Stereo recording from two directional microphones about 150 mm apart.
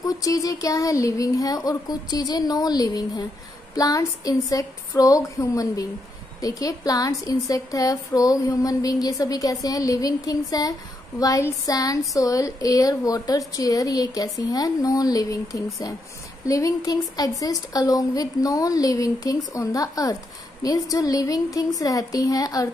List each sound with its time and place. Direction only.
0.0 s a woman's voice: 25° left (ahead or behind)